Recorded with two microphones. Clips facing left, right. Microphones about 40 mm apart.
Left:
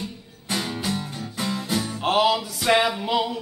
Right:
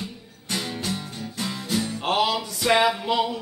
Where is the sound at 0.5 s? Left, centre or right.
Centre.